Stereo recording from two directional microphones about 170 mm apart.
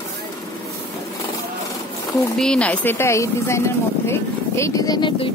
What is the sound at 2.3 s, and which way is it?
Speech, 5° left (ahead or behind).